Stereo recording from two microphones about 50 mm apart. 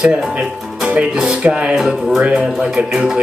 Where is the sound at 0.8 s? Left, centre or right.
Centre.